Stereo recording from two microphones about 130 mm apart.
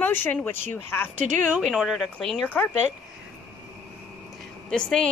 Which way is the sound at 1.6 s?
Centre (ahead or behind).